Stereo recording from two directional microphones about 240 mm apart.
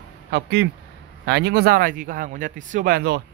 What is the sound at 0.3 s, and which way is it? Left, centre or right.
Speech, right.